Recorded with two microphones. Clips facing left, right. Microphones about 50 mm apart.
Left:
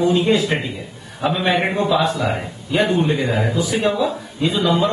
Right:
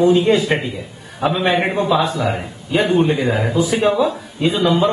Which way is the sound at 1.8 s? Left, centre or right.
Centre.